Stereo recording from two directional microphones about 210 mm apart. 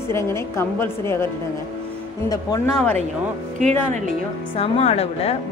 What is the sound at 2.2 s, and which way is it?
Speech, 15° left (ahead or behind).